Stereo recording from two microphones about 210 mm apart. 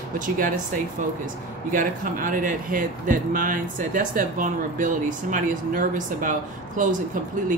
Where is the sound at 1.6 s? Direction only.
40° right (ahead or behind).